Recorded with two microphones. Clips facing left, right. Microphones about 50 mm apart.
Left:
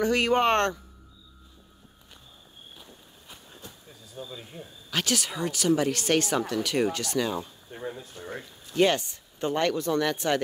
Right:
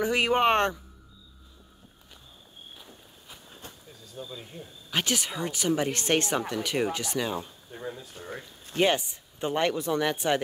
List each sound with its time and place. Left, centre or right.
0.0 s speech: centre
3.6 s a sound: right
4.2 s speech: centre
4.9 s speech: right
6.3 s speech: centre
8.0 s speech: left
8.7 s speech: centre